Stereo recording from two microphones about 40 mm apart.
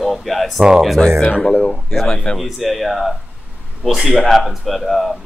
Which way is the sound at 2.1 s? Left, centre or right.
Left.